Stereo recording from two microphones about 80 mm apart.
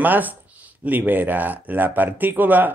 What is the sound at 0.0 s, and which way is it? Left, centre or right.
Speech, right.